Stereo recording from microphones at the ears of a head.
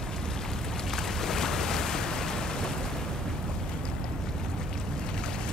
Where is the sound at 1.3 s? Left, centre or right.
Left.